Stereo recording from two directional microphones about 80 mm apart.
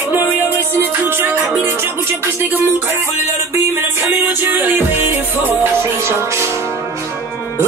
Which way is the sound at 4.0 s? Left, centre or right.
Right.